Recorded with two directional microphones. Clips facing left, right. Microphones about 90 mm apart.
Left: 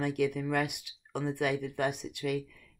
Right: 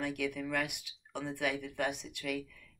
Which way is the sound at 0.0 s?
25° left (ahead or behind).